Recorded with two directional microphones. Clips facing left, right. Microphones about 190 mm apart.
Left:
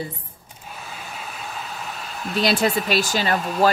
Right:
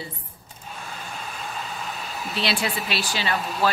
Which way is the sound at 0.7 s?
5° left (ahead or behind).